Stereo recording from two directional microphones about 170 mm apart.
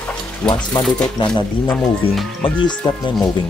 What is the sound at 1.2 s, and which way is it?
Speech, 30° left (ahead or behind).